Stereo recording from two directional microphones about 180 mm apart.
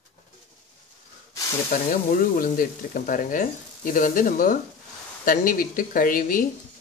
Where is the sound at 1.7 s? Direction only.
50° left (ahead or behind).